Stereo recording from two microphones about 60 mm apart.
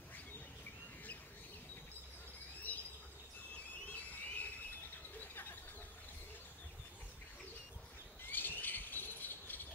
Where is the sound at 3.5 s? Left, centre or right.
Left.